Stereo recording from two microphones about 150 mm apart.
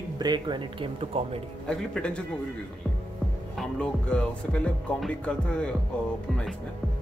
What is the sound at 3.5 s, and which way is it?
Speech, 5° left (ahead or behind).